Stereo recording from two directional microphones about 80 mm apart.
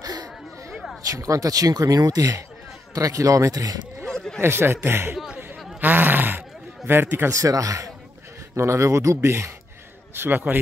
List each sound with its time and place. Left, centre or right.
0.0 s a sound: right
1.1 s speech: right
4.0 s a sound: centre
4.4 s speech: right
5.1 s chatter: centre
5.8 s grunt: right
6.9 s speech: right
7.3 s speech: right